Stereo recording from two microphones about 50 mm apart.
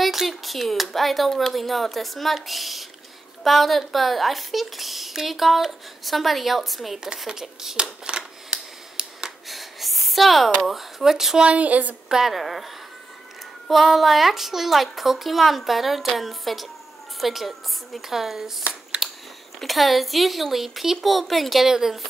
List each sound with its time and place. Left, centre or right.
0.0 s a woman's voice: centre
8.2 s camera: centre
9.5 s a sound: centre
10.6 s a woman's voice: centre
11.4 s a woman's voice: right
12.1 s a woman's voice: centre
19.0 s biting: centre
19.6 s a woman's voice: centre